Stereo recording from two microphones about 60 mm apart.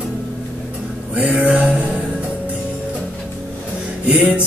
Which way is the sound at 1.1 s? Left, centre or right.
Right.